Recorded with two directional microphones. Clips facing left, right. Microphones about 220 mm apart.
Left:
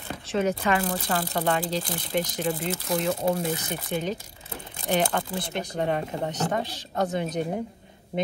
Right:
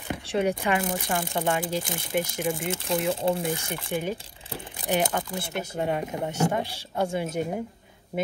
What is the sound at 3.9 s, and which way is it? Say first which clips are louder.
Speech: even; 10° right (ahead or behind).